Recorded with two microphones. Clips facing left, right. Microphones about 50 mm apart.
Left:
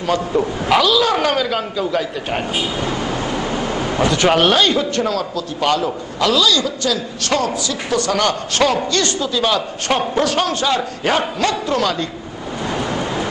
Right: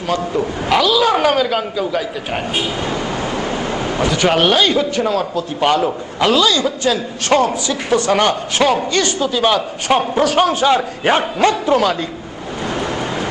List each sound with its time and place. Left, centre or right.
0.7 s a man's voice: centre
2.8 s vehicle: centre
3.6 s a sound: centre
3.9 s a man's voice: centre
5.3 s a man's voice: right
8.5 s a man's voice: centre